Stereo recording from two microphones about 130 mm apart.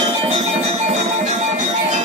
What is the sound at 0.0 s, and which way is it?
Music, 55° right (ahead or behind).